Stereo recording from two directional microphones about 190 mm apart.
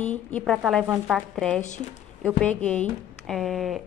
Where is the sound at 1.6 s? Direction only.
40° left (ahead or behind).